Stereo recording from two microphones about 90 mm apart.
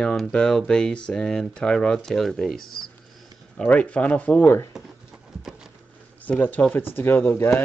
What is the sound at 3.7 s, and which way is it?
Speech, 15° left (ahead or behind).